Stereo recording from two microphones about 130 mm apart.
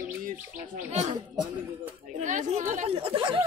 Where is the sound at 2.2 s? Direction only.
70° right (ahead or behind).